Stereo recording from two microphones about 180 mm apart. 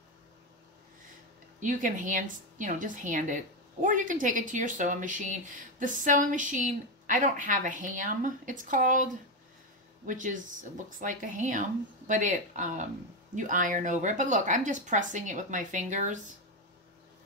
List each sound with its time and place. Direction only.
1.6 s a woman's voice: 45° right (ahead or behind)